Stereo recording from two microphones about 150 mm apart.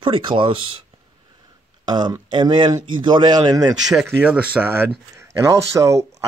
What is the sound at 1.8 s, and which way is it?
Speech, 30° right (ahead or behind).